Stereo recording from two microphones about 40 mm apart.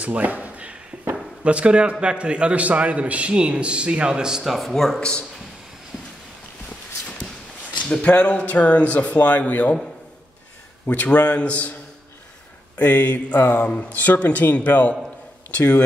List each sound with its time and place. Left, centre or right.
0.0 s a sound: right
1.4 s a man's voice: right
4.1 s speech: centre
4.5 s speech: centre
7.9 s speech: left
10.9 s speech: left
12.7 s speech: left
13.4 s speech: left
13.9 s speech: left